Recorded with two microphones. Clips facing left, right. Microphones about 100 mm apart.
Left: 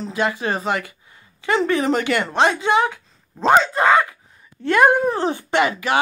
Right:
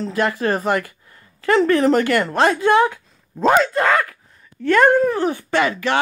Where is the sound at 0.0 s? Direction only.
10° left (ahead or behind).